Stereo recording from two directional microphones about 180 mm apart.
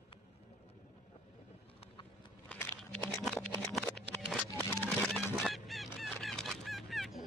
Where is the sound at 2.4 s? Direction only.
10° left (ahead or behind).